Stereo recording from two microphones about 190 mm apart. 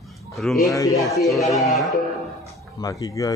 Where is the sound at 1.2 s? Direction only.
Centre (ahead or behind).